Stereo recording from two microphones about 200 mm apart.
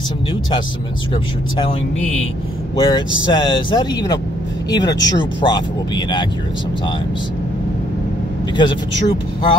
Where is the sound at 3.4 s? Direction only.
25° left (ahead or behind).